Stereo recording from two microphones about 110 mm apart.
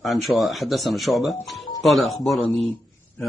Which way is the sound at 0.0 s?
Centre (ahead or behind).